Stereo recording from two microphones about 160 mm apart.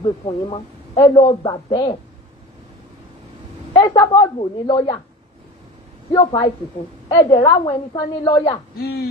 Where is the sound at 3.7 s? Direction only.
35° left (ahead or behind).